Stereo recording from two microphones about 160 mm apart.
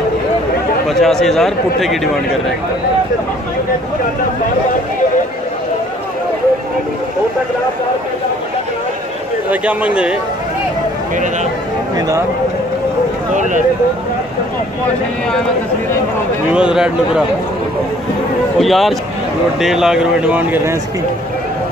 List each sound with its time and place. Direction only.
0.8 s a man's voice: centre (ahead or behind)
9.5 s speech: 10° right (ahead or behind)
13.3 s speech: 50° right (ahead or behind)
16.5 s a man's voice: 5° right (ahead or behind)
18.6 s a man's voice: centre (ahead or behind)